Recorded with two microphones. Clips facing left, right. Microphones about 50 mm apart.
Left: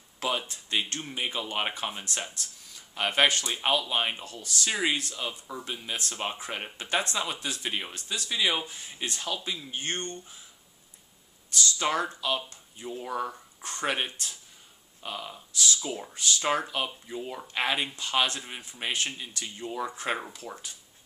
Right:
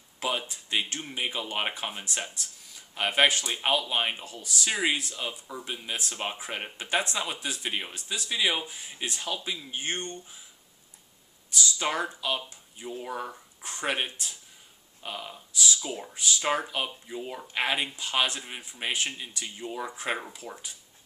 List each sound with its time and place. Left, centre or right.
0.2 s speech: centre
11.5 s speech: centre